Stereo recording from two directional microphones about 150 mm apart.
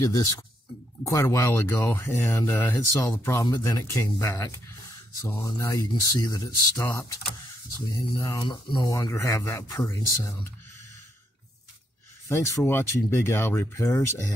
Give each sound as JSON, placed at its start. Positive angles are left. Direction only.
{"t": 0.0, "sound": "speech", "side_deg": 25}
{"t": 12.3, "sound": "speech", "side_deg": 20}